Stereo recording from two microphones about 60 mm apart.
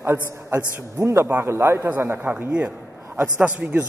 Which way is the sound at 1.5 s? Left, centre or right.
Right.